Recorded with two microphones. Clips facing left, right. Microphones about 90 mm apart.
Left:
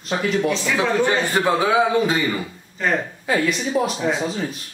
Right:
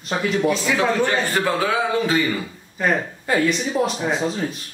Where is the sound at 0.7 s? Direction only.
15° left (ahead or behind).